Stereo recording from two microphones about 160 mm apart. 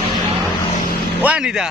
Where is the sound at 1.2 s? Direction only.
5° right (ahead or behind).